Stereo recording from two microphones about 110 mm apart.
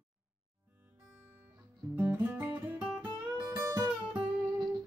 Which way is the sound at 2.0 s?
15° right (ahead or behind).